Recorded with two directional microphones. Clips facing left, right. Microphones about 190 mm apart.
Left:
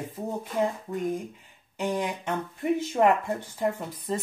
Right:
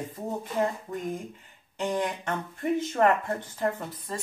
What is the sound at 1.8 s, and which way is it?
Speech, 10° left (ahead or behind).